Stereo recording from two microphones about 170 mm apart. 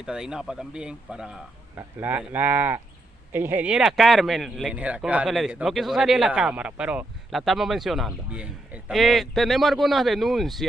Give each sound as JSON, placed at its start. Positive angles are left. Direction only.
{"t": 0.0, "sound": "speech", "side_deg": -5}